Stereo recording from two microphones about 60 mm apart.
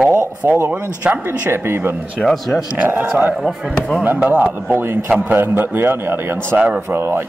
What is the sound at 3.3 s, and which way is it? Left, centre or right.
Speech, centre.